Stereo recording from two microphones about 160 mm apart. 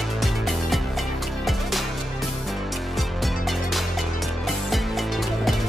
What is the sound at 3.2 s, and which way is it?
Music, centre (ahead or behind).